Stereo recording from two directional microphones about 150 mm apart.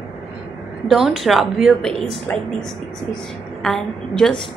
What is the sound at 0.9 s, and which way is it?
A woman's voice, centre (ahead or behind).